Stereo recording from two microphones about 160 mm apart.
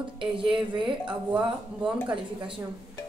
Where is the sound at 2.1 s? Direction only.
30° right (ahead or behind).